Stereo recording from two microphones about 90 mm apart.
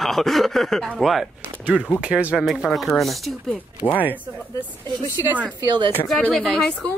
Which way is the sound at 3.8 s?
15° left (ahead or behind).